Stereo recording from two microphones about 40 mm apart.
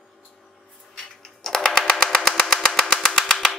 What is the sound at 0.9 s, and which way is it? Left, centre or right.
Typing, centre.